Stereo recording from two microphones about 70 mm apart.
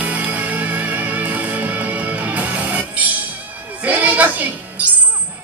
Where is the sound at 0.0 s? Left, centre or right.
Right.